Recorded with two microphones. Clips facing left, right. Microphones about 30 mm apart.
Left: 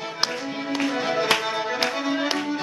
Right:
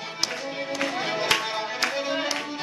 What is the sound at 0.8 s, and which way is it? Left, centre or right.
Music, centre.